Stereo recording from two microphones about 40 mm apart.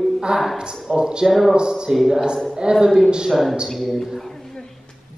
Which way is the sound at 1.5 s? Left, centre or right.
Centre.